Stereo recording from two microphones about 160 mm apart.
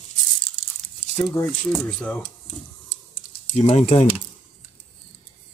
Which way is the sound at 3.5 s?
45° left (ahead or behind).